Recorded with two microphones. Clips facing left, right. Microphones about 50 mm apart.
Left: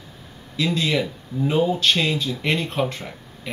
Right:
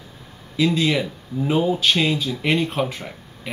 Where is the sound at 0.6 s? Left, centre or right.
Centre.